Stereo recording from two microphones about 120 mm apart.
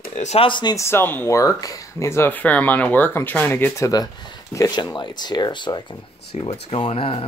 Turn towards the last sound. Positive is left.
turn(degrees=50)  # may be behind; listen again after turning